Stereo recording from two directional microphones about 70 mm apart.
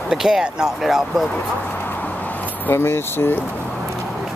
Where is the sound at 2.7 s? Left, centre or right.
Left.